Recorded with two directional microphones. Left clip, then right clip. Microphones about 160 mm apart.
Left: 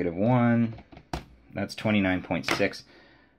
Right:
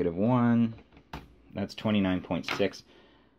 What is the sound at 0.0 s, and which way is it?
Speech, 25° right (ahead or behind).